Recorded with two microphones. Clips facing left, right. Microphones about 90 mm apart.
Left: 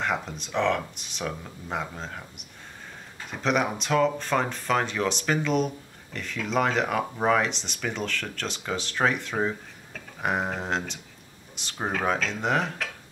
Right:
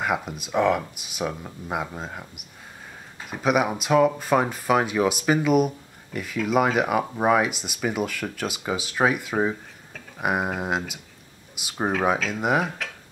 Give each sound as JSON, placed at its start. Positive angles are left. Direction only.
{"t": 0.0, "sound": "speech", "side_deg": -5}